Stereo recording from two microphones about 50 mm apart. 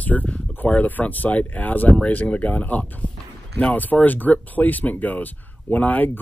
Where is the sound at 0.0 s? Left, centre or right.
Left.